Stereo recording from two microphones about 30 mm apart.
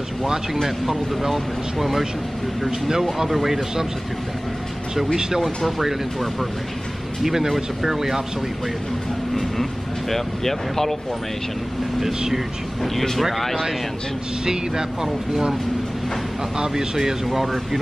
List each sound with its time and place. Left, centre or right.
1.3 s speech: centre
3.3 s speech: centre
4.9 s speech: centre
7.2 s speech: centre
9.3 s speech: centre
13.2 s speech: centre
14.4 s speech: right
16.5 s speech: centre